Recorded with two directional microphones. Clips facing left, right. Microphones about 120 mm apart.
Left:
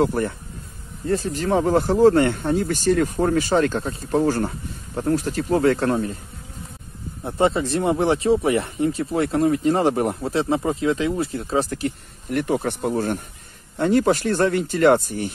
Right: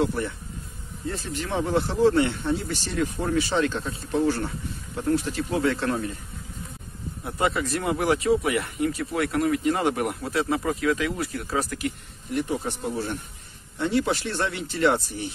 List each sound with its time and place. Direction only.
0.0 s speech: 45° left (ahead or behind)
7.2 s speech: 30° left (ahead or behind)
12.3 s speech: 60° left (ahead or behind)